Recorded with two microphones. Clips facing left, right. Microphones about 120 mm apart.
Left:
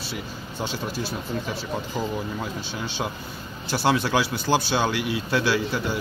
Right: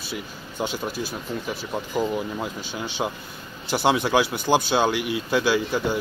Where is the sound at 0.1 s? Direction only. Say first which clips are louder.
Even; 15° right (ahead or behind).